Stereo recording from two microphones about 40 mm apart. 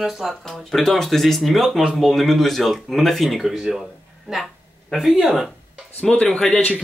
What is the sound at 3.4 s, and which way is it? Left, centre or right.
Speech, centre.